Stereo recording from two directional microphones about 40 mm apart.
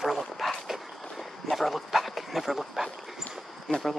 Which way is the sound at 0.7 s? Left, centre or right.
Centre.